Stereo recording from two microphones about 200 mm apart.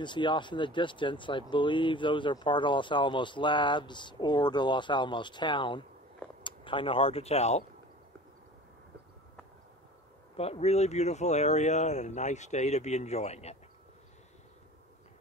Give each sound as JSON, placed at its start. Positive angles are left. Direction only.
{"t": 0.0, "sound": "speech", "side_deg": 25}
{"t": 10.3, "sound": "speech", "side_deg": 30}